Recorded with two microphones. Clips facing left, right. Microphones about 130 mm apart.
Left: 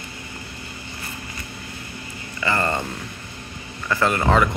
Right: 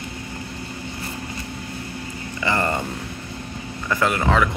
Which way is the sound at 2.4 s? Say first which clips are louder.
Even; 15° right (ahead or behind).